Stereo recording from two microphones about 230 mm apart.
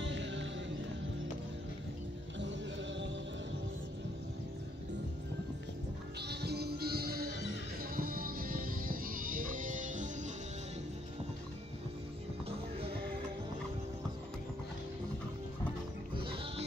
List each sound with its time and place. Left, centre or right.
0.0 s music: right
2.3 s music: right
6.2 s music: right
16.2 s music: right